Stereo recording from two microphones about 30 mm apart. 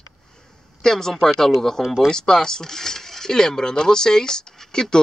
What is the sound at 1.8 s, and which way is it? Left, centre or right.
Speech, centre.